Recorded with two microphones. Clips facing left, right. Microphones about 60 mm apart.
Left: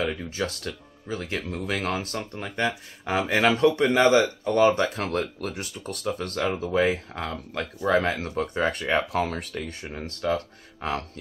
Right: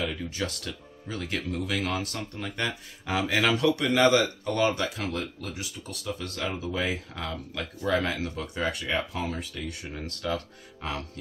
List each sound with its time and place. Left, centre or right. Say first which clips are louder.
0.0 s speech: left 3 dB; left
1.5 s speech: left 2 dB; left
2.1 s speech: left 3 dB; left
2.6 s speech: left 6 dB; left
4.8 s speech: left 4 dB; left
6.6 s speech: left 7 dB; left
9.1 s speech: left 6 dB; left
9.6 s speech: left 3 dB; left